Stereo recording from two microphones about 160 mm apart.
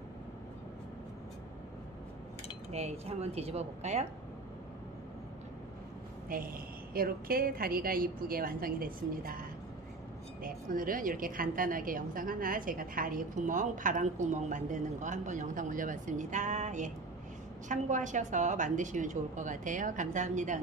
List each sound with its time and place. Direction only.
2.7 s speech: 40° right (ahead or behind)
6.3 s a woman's voice: 60° right (ahead or behind)